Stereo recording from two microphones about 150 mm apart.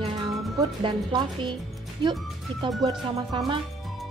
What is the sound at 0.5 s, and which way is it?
A woman's voice, 30° right (ahead or behind).